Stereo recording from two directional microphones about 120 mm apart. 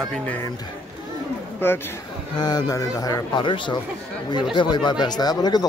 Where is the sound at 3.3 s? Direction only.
45° left (ahead or behind).